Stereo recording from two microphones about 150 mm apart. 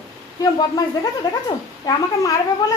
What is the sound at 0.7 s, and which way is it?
Speech, 25° left (ahead or behind).